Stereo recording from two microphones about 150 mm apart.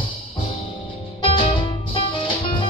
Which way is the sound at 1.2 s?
35° left (ahead or behind).